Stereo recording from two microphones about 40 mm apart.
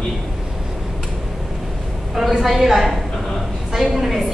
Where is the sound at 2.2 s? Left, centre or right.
Centre.